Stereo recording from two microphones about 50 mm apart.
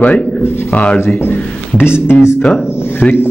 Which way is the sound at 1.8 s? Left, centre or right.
Left.